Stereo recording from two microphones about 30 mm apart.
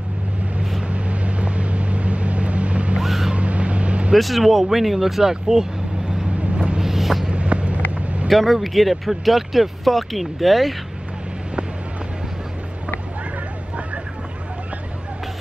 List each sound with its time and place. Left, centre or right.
0.8 s vehicle: right
3.0 s vehicle: centre
3.3 s vehicle: right
4.2 s speech: centre
5.3 s speech: centre
6.8 s boat: centre
7.2 s vehicle: right
8.3 s speech: centre